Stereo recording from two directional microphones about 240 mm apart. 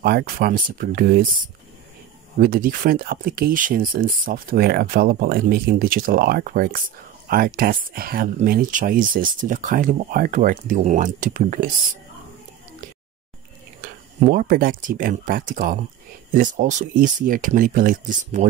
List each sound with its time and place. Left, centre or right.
0.0 s speech: right
13.7 s speech: right